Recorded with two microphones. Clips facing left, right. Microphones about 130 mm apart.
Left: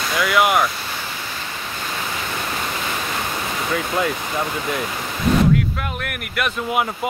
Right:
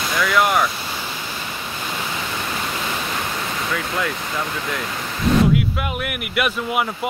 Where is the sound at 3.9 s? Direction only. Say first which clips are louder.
Left 3 dB; 20° left (ahead or behind).